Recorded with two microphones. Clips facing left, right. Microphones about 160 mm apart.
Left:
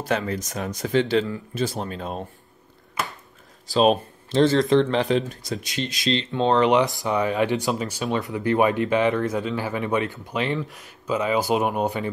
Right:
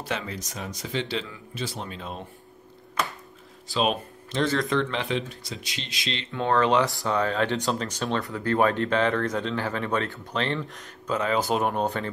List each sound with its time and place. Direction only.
0.0 s speech: 50° left (ahead or behind)
3.6 s speech: 40° left (ahead or behind)
6.3 s speech: 20° left (ahead or behind)